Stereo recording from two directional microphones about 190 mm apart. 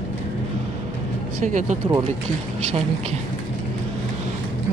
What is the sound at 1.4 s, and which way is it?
Speech, 40° right (ahead or behind).